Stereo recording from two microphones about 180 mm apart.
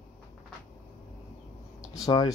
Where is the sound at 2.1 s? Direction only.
20° left (ahead or behind).